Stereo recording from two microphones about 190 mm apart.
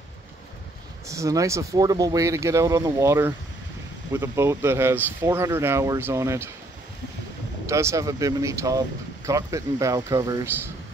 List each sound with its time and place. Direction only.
1.0 s speech: 15° right (ahead or behind)
7.6 s speech: 15° right (ahead or behind)